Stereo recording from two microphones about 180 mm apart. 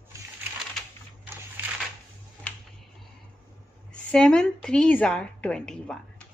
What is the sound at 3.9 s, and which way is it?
A woman's voice, 5° left (ahead or behind).